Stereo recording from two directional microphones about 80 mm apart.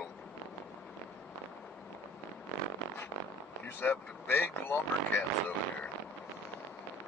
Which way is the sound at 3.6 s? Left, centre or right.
Left.